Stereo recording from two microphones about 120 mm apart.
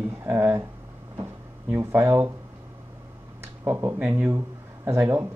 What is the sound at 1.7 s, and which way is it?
Speech, 20° right (ahead or behind).